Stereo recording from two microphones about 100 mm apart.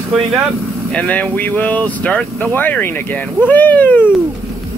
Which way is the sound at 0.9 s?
15° left (ahead or behind).